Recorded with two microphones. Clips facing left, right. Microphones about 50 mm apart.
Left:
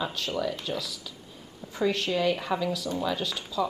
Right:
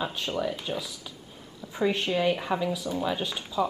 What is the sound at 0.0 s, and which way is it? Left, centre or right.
Speech, centre.